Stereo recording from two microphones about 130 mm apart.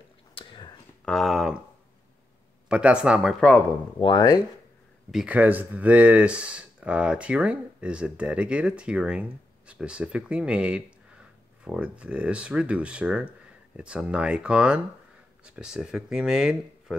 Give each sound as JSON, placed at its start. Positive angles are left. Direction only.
{"t": 0.3, "sound": "whispering", "side_deg": 40}
{"t": 1.0, "sound": "speech", "side_deg": 0}
{"t": 2.7, "sound": "speech", "side_deg": -10}
{"t": 4.0, "sound": "speech", "side_deg": 30}
{"t": 5.1, "sound": "speech", "side_deg": -10}